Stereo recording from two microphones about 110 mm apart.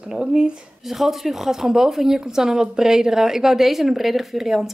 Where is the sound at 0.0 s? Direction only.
5° right (ahead or behind).